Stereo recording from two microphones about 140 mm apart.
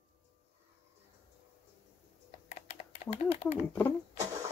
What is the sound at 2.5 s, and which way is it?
Typing, 50° left (ahead or behind).